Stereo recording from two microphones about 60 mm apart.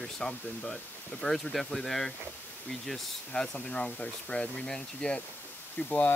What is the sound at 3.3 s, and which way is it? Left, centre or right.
Speech, centre.